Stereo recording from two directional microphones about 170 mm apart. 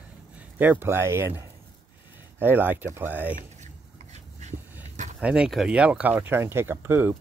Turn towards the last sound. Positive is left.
turn(degrees=-10)  # may be behind; listen again after turning